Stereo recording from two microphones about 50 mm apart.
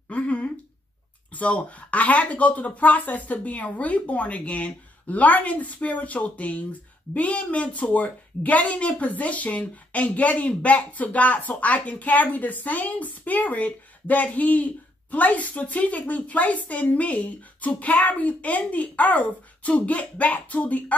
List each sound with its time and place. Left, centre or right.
0.1 s speech: left